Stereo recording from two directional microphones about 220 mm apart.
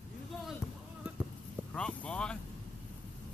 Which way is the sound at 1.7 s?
5° left (ahead or behind).